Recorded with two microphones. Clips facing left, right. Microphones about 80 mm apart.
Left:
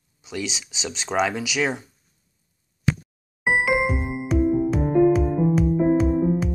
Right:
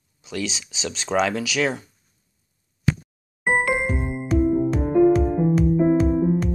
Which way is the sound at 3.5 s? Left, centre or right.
Centre.